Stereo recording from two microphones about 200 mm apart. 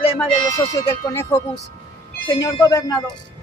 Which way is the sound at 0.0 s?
15° left (ahead or behind).